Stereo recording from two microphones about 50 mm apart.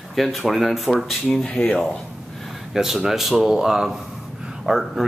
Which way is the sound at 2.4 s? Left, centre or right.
Centre.